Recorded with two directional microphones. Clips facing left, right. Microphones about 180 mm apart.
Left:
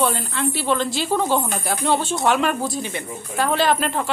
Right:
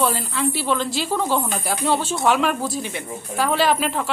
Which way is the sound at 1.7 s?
Centre (ahead or behind).